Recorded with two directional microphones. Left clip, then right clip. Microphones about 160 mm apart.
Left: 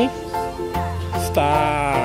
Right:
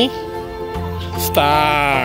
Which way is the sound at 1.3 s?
Centre (ahead or behind).